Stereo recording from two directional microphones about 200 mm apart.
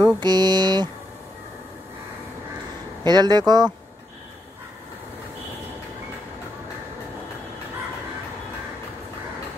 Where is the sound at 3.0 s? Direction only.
20° right (ahead or behind).